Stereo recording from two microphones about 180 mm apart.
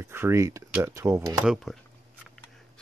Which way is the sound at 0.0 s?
15° right (ahead or behind).